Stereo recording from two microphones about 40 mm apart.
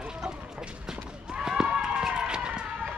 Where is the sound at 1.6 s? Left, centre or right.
Right.